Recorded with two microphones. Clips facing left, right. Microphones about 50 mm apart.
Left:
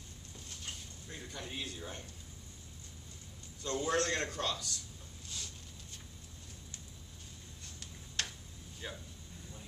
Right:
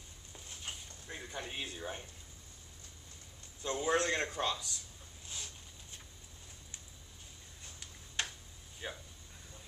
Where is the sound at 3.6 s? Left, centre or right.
Centre.